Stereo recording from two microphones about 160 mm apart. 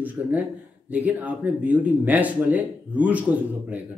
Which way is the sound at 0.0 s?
10° right (ahead or behind).